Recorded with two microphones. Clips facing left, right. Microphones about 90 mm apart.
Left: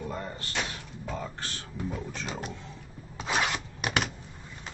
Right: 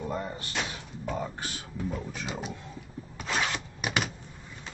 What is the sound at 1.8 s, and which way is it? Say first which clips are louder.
Speech: right 1 dB; centre (ahead or behind).